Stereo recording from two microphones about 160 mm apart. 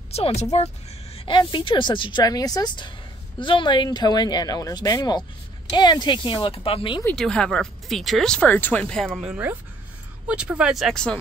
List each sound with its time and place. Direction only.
0.1 s speech: 40° left (ahead or behind)
1.1 s speech: 30° left (ahead or behind)
7.2 s speech: 5° left (ahead or behind)